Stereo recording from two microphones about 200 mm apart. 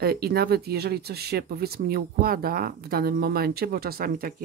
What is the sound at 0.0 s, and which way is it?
Speech, 50° right (ahead or behind).